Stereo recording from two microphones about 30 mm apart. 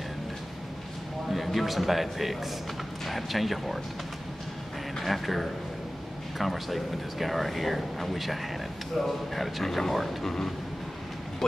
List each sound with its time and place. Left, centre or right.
1.3 s speech: centre
5.0 s speech: centre